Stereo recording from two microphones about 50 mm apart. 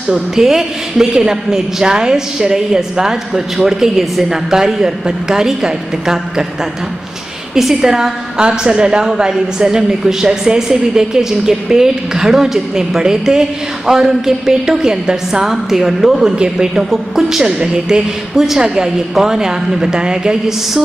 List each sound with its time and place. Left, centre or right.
0.1 s a woman's voice: centre
7.5 s a woman's voice: centre